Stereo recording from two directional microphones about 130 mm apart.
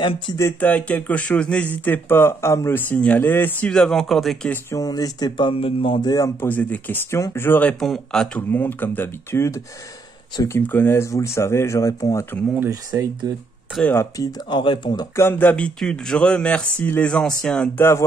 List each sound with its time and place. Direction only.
0.4 s speech: 15° left (ahead or behind)
3.7 s speech: 5° left (ahead or behind)
4.7 s speech: 30° left (ahead or behind)
5.5 s speech: 45° left (ahead or behind); by 6.3 s 30° left (ahead or behind)
6.4 s speech: 15° left (ahead or behind)
7.8 s speech: centre (ahead or behind)
8.4 s speech: 15° left (ahead or behind)
12.5 s speech: 20° right (ahead or behind)
14.1 s speech: 25° left (ahead or behind)
14.6 s speech: 40° left (ahead or behind)
15.1 s speech: 15° left (ahead or behind)